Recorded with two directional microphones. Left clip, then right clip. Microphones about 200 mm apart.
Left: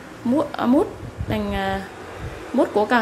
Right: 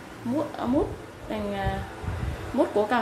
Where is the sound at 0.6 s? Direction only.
30° left (ahead or behind).